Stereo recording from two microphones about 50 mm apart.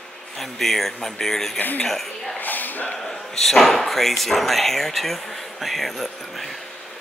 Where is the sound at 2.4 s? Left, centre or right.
Left.